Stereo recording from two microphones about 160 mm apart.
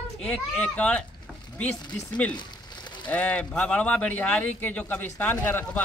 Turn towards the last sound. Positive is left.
turn(degrees=10)  # may be behind; listen again after turning